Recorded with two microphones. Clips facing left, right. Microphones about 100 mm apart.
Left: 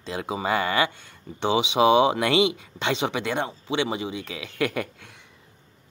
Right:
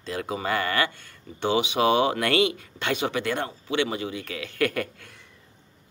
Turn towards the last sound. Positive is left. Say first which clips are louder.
# right 1 dB
turn(degrees=15)  # may be behind; listen again after turning